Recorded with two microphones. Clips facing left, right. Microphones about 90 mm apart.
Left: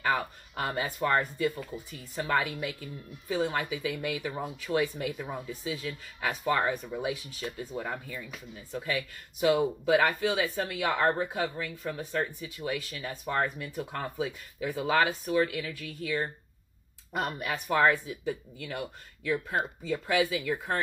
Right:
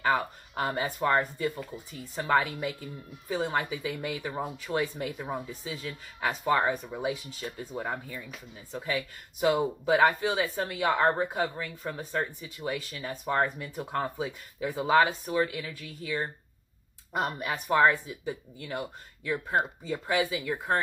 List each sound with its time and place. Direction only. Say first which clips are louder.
0.0 s speech: right 2 dB; 20° right (ahead or behind)
1.5 s speech: even; 5° right (ahead or behind)
2.1 s a woman's voice: right 3 dB; 25° right (ahead or behind)
4.3 s speech: even; 20° right (ahead or behind)
4.8 s a woman's voice: even; 30° right (ahead or behind)
6.4 s speech: right 2 dB; 20° right (ahead or behind)